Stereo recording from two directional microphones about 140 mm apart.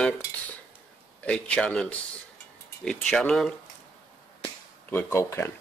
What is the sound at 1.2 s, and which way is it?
Speech, 5° left (ahead or behind).